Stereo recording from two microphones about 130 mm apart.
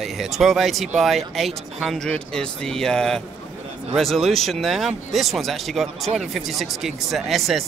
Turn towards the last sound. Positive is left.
turn(degrees=0)  # may be behind; listen again after turning